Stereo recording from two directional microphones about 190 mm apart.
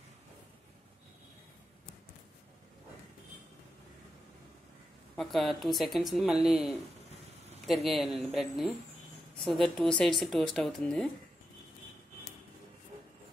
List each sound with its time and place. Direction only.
5.1 s speech: centre (ahead or behind)